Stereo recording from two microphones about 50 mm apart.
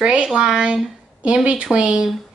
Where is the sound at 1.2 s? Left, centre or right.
Right.